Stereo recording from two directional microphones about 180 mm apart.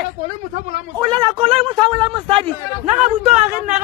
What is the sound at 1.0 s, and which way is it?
A man's voice, 25° right (ahead or behind).